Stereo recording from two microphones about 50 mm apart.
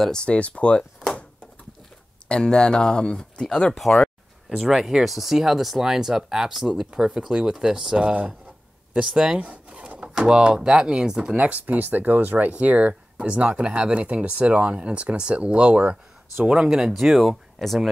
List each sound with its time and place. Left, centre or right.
0.0 s speech: centre
2.2 s speech: centre
4.5 s speech: centre
9.4 s speech: right
11.3 s speech: right; by 16.9 s centre
16.9 s speech: centre